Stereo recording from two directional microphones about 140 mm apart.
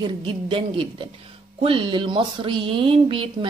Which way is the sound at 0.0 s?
40° right (ahead or behind).